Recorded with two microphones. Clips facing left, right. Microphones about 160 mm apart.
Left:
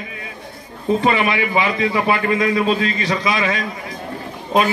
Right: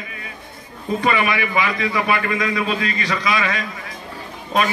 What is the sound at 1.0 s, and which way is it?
A man's voice, 25° left (ahead or behind).